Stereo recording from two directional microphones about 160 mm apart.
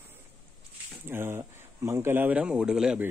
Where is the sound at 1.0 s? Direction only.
15° right (ahead or behind).